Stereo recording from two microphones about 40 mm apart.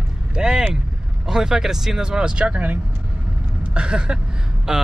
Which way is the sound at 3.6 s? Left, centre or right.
Right.